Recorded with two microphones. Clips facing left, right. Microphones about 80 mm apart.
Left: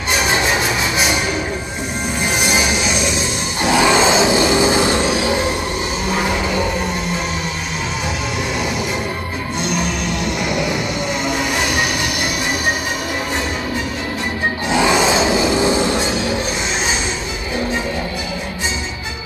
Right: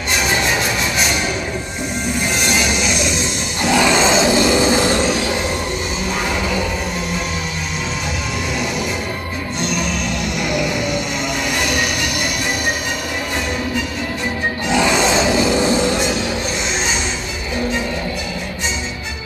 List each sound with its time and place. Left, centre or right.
0.3 s music: centre
2.4 s music: centre
3.6 s a sound: centre
14.7 s music: left